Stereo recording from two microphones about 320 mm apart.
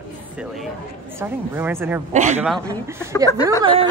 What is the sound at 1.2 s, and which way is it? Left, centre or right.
Speech, centre.